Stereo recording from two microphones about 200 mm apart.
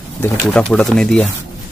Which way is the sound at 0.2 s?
5° left (ahead or behind).